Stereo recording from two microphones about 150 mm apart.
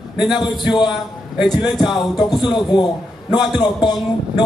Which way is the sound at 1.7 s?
Centre (ahead or behind).